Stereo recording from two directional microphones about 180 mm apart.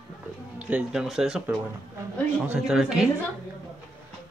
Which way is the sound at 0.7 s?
5° right (ahead or behind).